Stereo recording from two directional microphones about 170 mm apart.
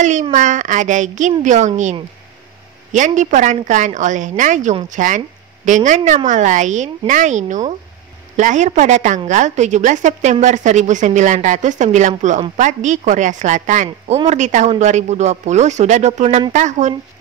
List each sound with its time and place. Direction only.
0.0 s a woman's voice: 45° right (ahead or behind)
2.9 s a woman's voice: 45° right (ahead or behind)